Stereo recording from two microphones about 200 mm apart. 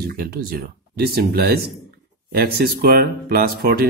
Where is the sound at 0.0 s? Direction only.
50° right (ahead or behind).